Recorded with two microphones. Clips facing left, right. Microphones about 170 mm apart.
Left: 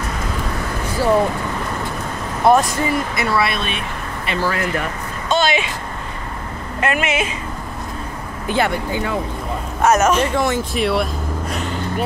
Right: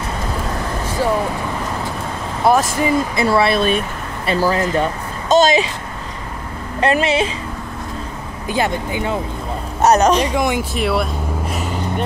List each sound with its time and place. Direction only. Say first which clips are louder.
2.4 s speech: left 1 dB; centre (ahead or behind)
2.8 s speech: right 3 dB; 25° right (ahead or behind)
5.3 s speech: right 5 dB; 40° right (ahead or behind)
6.8 s speech: right 4 dB; 30° right (ahead or behind)
8.5 s speech: even; 20° right (ahead or behind)
9.8 s speech: right 2 dB; 35° right (ahead or behind)
10.1 s speech: right 1 dB; 15° right (ahead or behind)
10.7 s vehicle: even; centre (ahead or behind)